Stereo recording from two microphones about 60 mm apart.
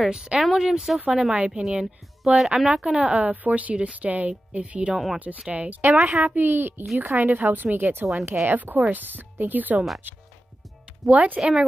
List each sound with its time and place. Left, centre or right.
0.0 s speech: centre
3.0 s a woman's voice: right
4.9 s speech: centre
5.5 s a woman's voice: right
11.1 s a woman's voice: right